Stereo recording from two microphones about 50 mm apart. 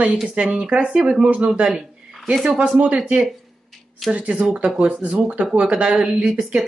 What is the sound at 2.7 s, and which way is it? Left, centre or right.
Speech, right.